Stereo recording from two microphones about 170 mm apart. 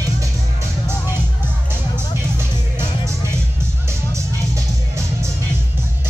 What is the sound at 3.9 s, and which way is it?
Music, 15° right (ahead or behind).